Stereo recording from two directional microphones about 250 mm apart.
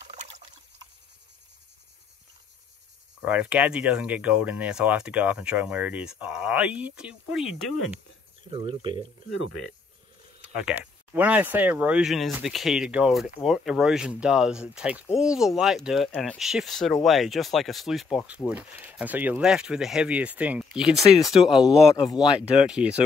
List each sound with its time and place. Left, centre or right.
3.2 s speech: centre
8.5 s speech: right
10.6 s speech: centre
21.2 s speech: left
22.0 s speech: centre